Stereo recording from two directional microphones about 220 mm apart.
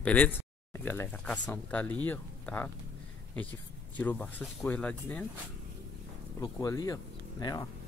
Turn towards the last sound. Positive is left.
turn(degrees=15)  # may be behind; listen again after turning